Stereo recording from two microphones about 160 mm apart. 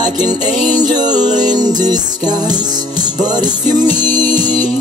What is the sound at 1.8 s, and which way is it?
Music, 25° right (ahead or behind).